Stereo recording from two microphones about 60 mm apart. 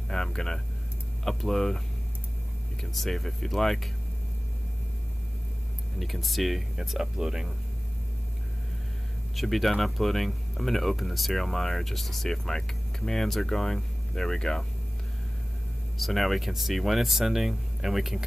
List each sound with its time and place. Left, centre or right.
0.1 s speech: centre
2.8 s speech: centre
5.9 s speech: centre
9.3 s speech: centre
16.0 s speech: centre